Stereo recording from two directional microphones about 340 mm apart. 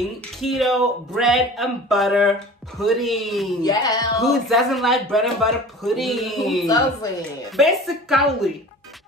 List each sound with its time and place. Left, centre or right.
0.4 s speech: centre
3.6 s music: centre
4.2 s speech: centre
6.6 s music: centre
7.5 s speech: centre